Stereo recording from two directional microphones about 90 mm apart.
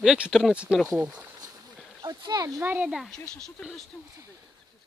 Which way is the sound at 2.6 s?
20° right (ahead or behind).